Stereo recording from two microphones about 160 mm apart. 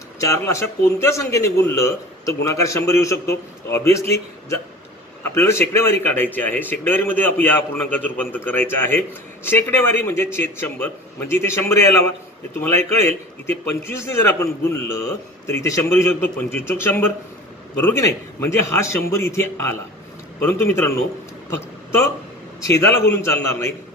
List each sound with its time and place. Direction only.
0.2 s speech: 20° left (ahead or behind)
5.2 s a man's voice: 15° left (ahead or behind)
22.7 s speech: 20° left (ahead or behind)